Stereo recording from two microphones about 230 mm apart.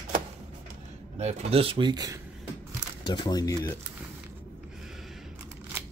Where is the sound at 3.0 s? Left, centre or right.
Centre.